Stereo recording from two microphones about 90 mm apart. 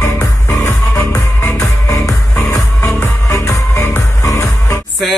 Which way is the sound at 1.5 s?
35° left (ahead or behind).